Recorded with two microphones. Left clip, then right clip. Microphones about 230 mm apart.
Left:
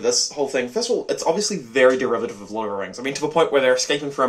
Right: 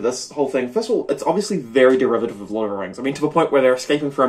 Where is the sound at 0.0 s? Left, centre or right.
Centre.